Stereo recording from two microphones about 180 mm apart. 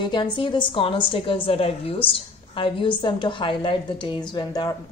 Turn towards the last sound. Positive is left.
turn(degrees=25)  # may be behind; listen again after turning